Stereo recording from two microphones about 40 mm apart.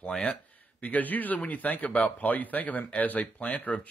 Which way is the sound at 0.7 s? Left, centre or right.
Left.